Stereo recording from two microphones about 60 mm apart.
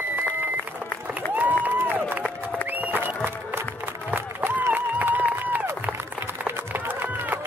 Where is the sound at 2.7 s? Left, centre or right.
Right.